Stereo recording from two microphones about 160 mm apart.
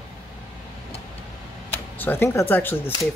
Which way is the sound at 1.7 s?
10° left (ahead or behind).